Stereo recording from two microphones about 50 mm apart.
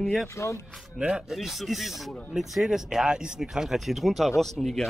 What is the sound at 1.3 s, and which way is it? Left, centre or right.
Speech, centre.